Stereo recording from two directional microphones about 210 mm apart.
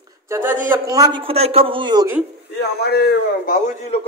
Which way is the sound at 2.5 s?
50° left (ahead or behind).